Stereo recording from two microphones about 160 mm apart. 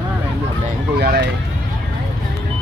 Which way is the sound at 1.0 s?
70° right (ahead or behind).